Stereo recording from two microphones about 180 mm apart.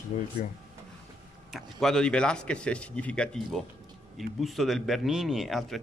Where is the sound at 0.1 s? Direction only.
40° left (ahead or behind).